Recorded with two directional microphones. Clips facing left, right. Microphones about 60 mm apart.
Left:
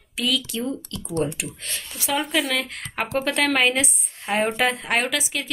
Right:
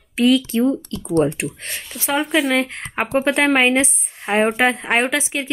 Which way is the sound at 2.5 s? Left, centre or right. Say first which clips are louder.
Right 7 dB; right.